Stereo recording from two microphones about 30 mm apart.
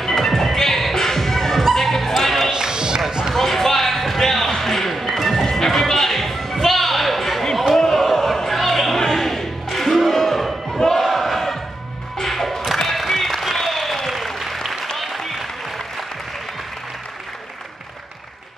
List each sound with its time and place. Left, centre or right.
0.0 s music: centre
2.5 s music: right
3.1 s basketball bounce: right
3.3 s basketball bounce: centre
4.6 s music: centre
5.7 s a sound: centre
7.8 s basketball bounce: centre
8.5 s music: centre
10.8 s battle cry: centre
12.2 s music: centre
12.9 s applause: centre